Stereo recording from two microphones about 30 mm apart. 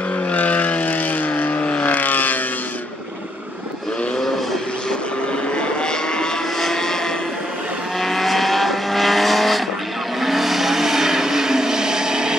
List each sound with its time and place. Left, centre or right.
0.3 s vehicle: left
5.6 s cattle: left
6.6 s vehicle: centre
8.0 s vehicle: centre; by 12.4 s right